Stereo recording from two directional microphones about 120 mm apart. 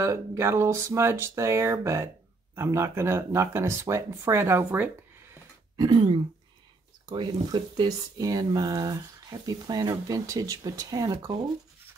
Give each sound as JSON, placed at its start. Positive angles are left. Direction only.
{"t": 0.0, "sound": "speech", "side_deg": -25}
{"t": 5.8, "sound": "speech", "side_deg": -40}